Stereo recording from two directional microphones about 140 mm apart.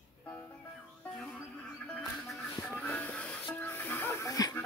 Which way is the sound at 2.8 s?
10° left (ahead or behind).